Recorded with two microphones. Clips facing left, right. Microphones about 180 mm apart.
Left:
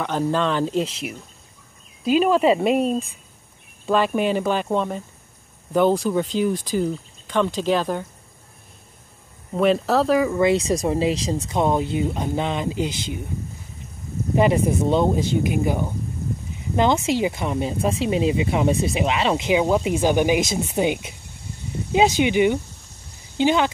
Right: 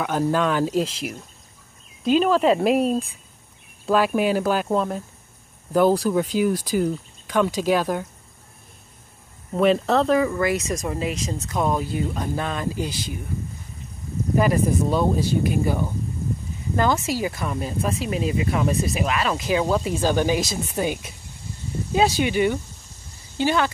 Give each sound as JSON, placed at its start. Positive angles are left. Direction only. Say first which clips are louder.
{"t": 0.0, "sound": "speech", "louder": "even", "side_deg": -10}
{"t": 9.5, "sound": "speech", "louder": "even", "side_deg": 0}
{"t": 10.4, "sound": "speech", "louder": "left 5 dB", "side_deg": 30}
{"t": 14.3, "sound": "speech", "louder": "left 2 dB", "side_deg": 25}